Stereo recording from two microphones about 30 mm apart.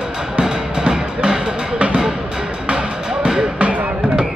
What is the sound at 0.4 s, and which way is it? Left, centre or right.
Music, right.